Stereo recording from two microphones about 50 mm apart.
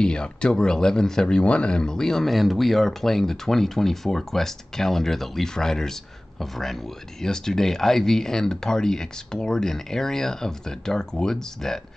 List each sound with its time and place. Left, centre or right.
0.0 s speech: centre